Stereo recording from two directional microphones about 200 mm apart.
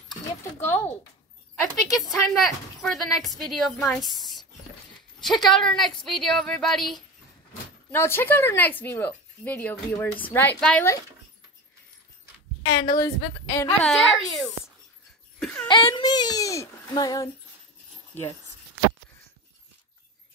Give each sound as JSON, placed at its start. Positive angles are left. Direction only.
{"t": 1.5, "sound": "speech", "side_deg": 0}
{"t": 7.9, "sound": "speech", "side_deg": 10}
{"t": 12.6, "sound": "a woman's voice", "side_deg": 20}
{"t": 13.7, "sound": "speech", "side_deg": 0}
{"t": 15.7, "sound": "speech", "side_deg": 25}